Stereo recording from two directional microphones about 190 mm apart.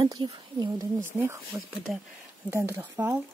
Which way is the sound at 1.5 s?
Centre (ahead or behind).